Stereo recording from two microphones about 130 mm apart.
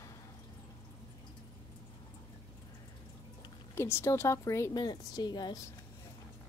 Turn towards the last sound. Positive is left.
turn(degrees=35)  # may be behind; listen again after turning